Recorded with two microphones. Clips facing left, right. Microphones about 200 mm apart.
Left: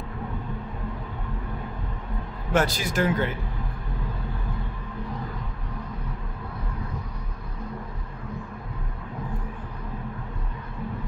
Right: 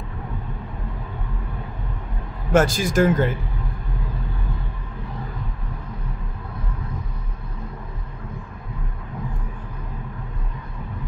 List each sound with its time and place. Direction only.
2.5 s speech: 45° right (ahead or behind)